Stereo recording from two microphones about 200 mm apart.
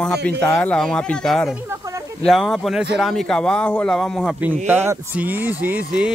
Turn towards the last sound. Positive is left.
turn(degrees=-5)  # may be behind; listen again after turning